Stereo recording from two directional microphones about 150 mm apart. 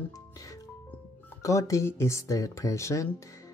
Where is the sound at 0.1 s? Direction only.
25° left (ahead or behind).